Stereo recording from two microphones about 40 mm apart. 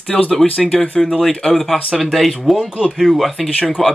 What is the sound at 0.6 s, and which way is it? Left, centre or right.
Speech, centre.